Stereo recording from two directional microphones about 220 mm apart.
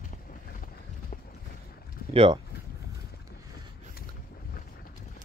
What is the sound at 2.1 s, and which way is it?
Speech, 25° right (ahead or behind).